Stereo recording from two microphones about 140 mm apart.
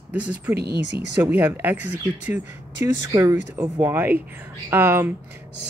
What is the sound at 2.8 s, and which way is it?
Speech, 20° right (ahead or behind).